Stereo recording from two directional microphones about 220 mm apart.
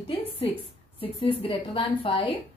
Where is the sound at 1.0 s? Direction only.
25° left (ahead or behind).